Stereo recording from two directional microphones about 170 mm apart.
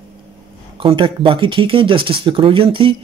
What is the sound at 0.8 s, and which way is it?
Speech, 30° right (ahead or behind).